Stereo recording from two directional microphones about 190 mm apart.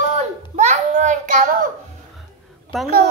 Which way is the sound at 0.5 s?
35° right (ahead or behind).